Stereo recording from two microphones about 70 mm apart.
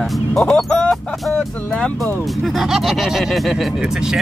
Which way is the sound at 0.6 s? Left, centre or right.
Centre.